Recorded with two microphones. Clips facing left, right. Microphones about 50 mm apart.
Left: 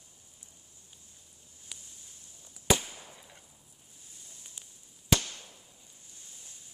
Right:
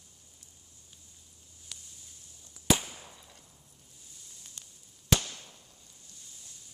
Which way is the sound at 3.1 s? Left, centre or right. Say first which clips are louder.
Left 2 dB; centre.